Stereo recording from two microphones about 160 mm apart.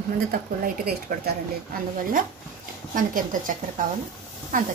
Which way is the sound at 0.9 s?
75° right (ahead or behind).